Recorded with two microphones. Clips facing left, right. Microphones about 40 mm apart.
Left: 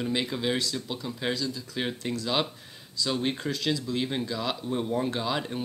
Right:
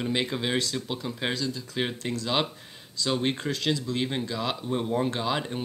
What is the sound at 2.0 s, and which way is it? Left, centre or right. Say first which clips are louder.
Speech: even; centre.